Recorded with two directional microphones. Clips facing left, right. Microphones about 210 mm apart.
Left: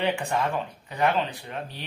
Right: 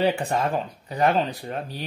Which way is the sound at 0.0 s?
35° right (ahead or behind).